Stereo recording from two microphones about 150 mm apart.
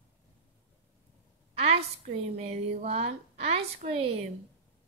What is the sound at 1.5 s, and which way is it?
A woman's voice, 45° right (ahead or behind).